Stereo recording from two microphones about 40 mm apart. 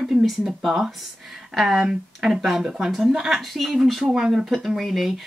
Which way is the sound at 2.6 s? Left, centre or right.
Centre.